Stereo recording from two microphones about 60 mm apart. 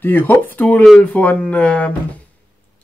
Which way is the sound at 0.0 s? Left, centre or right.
Left.